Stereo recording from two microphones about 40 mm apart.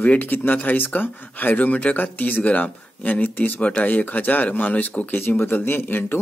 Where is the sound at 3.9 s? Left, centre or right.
Left.